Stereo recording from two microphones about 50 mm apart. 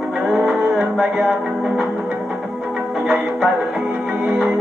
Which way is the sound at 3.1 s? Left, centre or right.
Centre.